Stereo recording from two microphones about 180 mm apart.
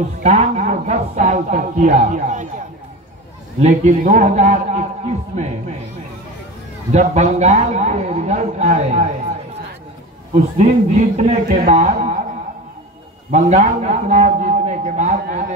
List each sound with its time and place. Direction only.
0.2 s a man's voice: 40° right (ahead or behind)
3.6 s a man's voice: 45° right (ahead or behind)
6.9 s a man's voice: 40° right (ahead or behind)
10.6 s a man's voice: 40° right (ahead or behind)
13.3 s a man's voice: 40° right (ahead or behind)